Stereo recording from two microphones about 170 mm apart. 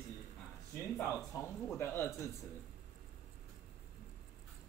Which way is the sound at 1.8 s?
15° left (ahead or behind).